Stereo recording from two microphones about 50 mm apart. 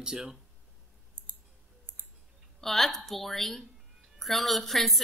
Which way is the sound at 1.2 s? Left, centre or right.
Right.